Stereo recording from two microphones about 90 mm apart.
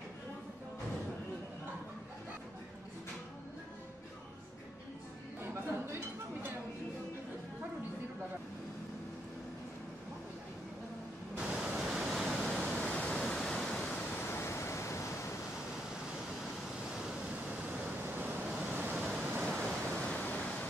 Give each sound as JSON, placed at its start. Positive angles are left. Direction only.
{"t": 11.3, "sound": "pink noise", "side_deg": -10}
{"t": 12.4, "sound": "a sound", "side_deg": 5}
{"t": 12.8, "sound": "waves", "side_deg": 10}
{"t": 14.1, "sound": "waves", "side_deg": 25}
{"t": 18.0, "sound": "waves", "side_deg": -20}
{"t": 18.9, "sound": "waves", "side_deg": -5}
{"t": 19.4, "sound": "pink noise", "side_deg": 5}
{"t": 20.1, "sound": "waves", "side_deg": 15}